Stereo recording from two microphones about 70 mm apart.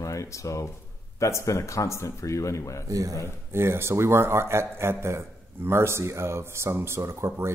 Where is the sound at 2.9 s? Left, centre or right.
Right.